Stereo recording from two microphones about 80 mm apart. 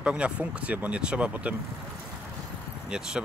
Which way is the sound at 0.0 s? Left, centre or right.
Centre.